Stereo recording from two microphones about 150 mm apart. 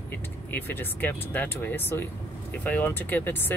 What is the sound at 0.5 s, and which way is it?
Speech, 15° left (ahead or behind).